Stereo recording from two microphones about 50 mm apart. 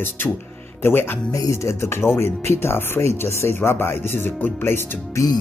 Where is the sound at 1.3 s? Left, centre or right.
Left.